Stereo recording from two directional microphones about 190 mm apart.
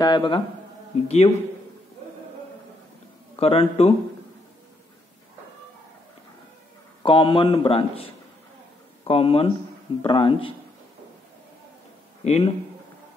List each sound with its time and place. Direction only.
0.0 s a man's voice: 25° left (ahead or behind)
1.0 s speech: 35° left (ahead or behind)
3.3 s speech: 30° left (ahead or behind)
7.0 s a man's voice: 25° left (ahead or behind)
12.3 s speech: 35° left (ahead or behind)